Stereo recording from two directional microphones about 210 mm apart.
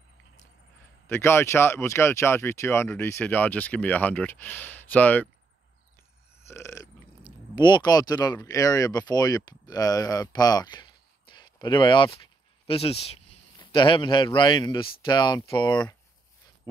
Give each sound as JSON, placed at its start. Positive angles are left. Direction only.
{"t": 1.0, "sound": "speech", "side_deg": 10}
{"t": 6.4, "sound": "burping", "side_deg": 15}
{"t": 7.5, "sound": "a man's voice", "side_deg": 20}